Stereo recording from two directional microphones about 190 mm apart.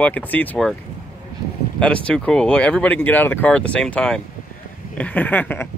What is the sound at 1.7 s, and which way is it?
Speech, 5° left (ahead or behind).